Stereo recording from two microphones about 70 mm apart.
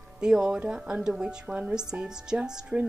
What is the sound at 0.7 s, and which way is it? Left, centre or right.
Speech, centre.